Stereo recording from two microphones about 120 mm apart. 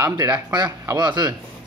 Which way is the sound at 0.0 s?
30° right (ahead or behind).